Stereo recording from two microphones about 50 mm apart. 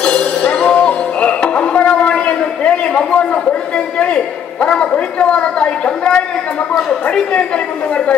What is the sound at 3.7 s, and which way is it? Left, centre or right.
A woman's voice, left.